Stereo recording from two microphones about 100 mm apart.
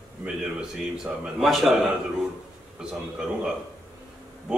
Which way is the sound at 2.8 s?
5° right (ahead or behind).